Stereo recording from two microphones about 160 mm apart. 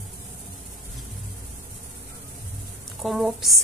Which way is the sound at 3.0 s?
Centre (ahead or behind).